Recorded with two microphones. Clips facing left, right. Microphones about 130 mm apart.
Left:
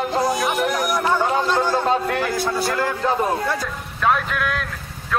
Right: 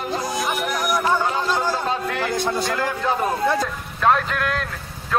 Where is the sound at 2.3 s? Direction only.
20° right (ahead or behind).